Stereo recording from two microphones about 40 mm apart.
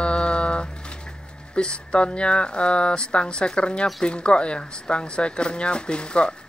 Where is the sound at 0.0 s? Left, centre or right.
Left.